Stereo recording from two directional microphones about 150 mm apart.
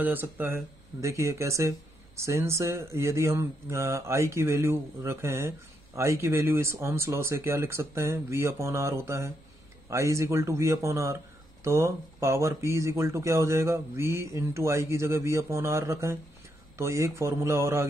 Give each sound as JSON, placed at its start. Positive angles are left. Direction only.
{"t": 0.0, "sound": "speech", "side_deg": -15}